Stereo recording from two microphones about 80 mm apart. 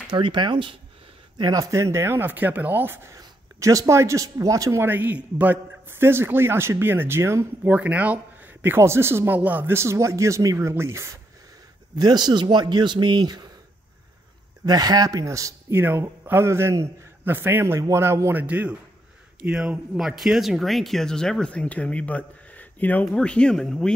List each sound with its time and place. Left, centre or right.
0.1 s speech: right
1.4 s speech: right
3.2 s speech: right
4.8 s a man's voice: right
7.7 s speech: centre
8.6 s speech: right
11.9 s a man's voice: right
14.7 s speech: right
15.7 s a man's voice: right
18.3 s a man's voice: centre